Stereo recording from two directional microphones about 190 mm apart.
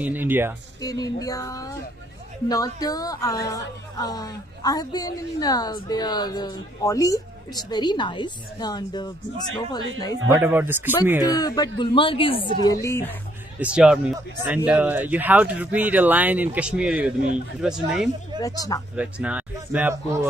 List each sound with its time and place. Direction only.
0.0 s speech: 10° right (ahead or behind)
0.7 s speech: 20° left (ahead or behind)
10.3 s speech: 10° right (ahead or behind)
11.2 s speech: 20° left (ahead or behind)
12.8 s speech: 15° left (ahead or behind)
13.6 s speech: 5° right (ahead or behind)
18.4 s speech: 20° left (ahead or behind)
18.9 s speech: 5° right (ahead or behind)